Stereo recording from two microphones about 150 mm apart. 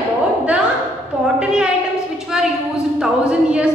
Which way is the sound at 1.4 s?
5° right (ahead or behind).